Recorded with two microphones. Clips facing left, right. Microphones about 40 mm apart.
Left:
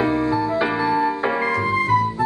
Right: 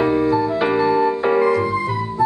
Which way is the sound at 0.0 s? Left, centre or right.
Centre.